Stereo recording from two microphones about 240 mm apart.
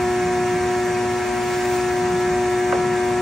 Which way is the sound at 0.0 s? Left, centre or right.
Centre.